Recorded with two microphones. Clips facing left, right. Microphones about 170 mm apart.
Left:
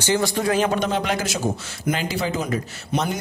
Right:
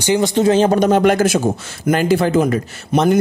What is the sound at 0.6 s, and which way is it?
A man's voice, 45° right (ahead or behind).